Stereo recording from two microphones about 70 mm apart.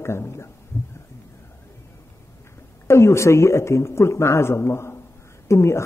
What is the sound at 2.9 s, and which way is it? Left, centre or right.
A man's voice, left.